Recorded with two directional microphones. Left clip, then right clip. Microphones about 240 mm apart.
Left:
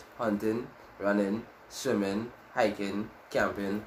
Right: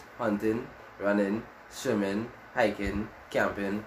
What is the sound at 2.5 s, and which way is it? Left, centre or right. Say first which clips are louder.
Speech: right 1 dB; centre.